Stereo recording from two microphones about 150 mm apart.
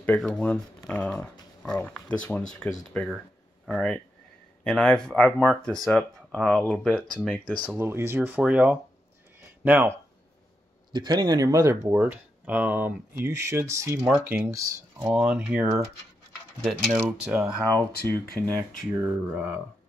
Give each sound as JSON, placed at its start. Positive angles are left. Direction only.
{"t": 0.0, "sound": "speech", "side_deg": 10}
{"t": 7.7, "sound": "speech", "side_deg": -15}
{"t": 10.9, "sound": "speech", "side_deg": -30}
{"t": 16.9, "sound": "speech", "side_deg": -5}
{"t": 17.7, "sound": "speech", "side_deg": 15}
{"t": 18.6, "sound": "speech", "side_deg": -10}